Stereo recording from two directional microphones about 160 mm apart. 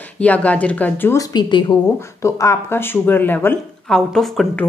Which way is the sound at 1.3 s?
30° left (ahead or behind).